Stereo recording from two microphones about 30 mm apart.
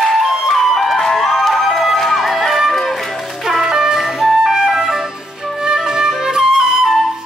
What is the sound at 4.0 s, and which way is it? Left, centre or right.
Music, centre.